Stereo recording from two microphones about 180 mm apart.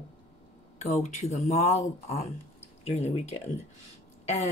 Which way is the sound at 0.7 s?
40° left (ahead or behind).